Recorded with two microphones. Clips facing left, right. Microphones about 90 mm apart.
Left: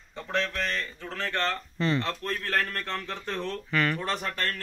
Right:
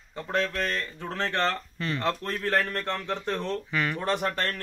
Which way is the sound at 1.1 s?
20° right (ahead or behind).